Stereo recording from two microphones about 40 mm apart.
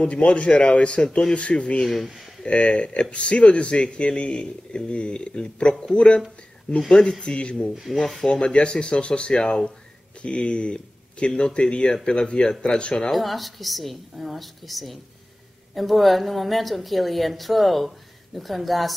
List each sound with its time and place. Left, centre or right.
0.0 s speech: left
13.1 s a woman's voice: centre